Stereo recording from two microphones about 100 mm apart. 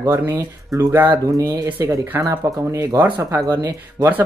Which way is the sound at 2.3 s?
25° right (ahead or behind).